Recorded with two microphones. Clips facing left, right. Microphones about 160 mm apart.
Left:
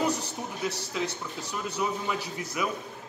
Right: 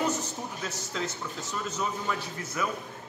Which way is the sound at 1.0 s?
10° left (ahead or behind).